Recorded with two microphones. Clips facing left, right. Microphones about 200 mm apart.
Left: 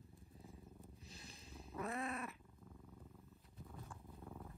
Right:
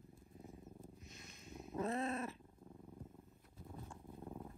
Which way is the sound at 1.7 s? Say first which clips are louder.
Right 5 dB; 30° right (ahead or behind).